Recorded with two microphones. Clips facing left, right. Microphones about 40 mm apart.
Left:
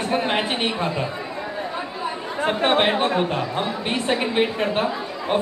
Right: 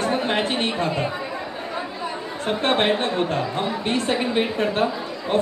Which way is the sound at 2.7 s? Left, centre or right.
Centre.